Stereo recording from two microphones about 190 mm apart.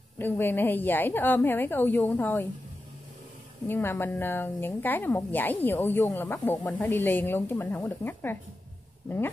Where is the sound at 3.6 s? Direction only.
10° left (ahead or behind).